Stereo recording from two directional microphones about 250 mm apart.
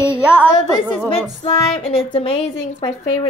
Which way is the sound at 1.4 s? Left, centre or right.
Left.